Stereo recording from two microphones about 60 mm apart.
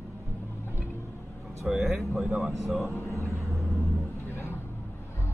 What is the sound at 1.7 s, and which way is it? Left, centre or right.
Speech, centre.